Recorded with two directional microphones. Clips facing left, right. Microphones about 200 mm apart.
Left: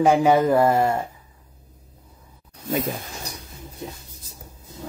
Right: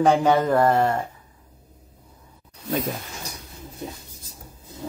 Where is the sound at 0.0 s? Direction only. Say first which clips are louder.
Left 2 dB; 10° left (ahead or behind).